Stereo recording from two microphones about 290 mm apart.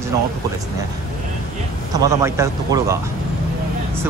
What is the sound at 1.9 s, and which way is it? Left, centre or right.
Speech, centre.